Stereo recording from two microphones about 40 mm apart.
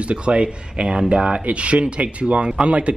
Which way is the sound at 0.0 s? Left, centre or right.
Right.